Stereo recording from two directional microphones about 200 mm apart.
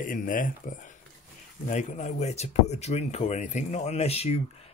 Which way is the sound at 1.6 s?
35° left (ahead or behind).